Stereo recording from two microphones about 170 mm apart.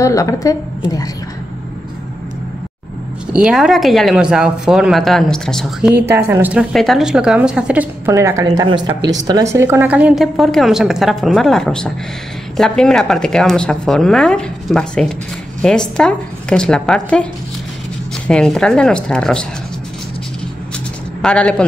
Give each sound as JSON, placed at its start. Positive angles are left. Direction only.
{"t": 0.0, "sound": "a woman's voice", "side_deg": 20}
{"t": 3.3, "sound": "speech", "side_deg": -5}
{"t": 6.7, "sound": "a woman's voice", "side_deg": 0}
{"t": 21.2, "sound": "speech", "side_deg": 5}